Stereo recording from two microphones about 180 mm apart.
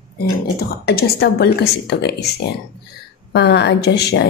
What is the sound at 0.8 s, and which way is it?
A woman's voice, 60° left (ahead or behind).